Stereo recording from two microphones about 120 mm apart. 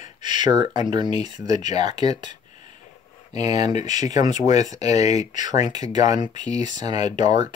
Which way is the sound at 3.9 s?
80° left.